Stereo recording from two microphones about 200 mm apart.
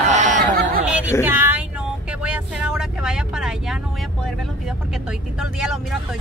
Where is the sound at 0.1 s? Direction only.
40° right (ahead or behind).